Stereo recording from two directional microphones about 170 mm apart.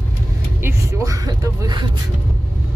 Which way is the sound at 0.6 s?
20° right (ahead or behind).